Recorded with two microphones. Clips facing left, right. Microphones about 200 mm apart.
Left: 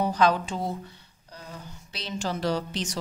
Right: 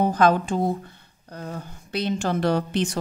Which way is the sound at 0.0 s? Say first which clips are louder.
Right 4 dB; 50° right (ahead or behind).